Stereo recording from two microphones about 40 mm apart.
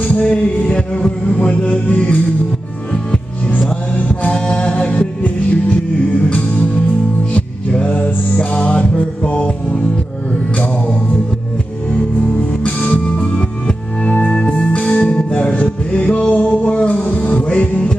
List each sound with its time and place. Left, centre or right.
0.1 s music: left
4.1 s music: left
7.8 s music: left
8.4 s music: left
11.9 s music: left
13.4 s music: left